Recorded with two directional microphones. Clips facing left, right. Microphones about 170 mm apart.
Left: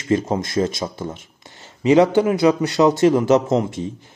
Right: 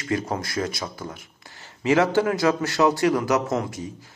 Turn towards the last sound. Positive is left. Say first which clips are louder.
# left 6 dB
turn(degrees=25)  # may be behind; listen again after turning